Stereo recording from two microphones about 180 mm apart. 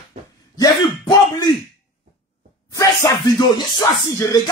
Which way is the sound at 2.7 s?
15° left (ahead or behind).